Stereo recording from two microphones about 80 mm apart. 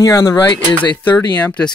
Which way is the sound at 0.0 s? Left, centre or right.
Left.